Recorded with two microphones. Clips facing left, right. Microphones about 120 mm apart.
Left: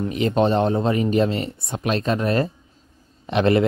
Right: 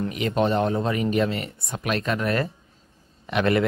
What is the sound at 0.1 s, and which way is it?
Speech, 30° left (ahead or behind).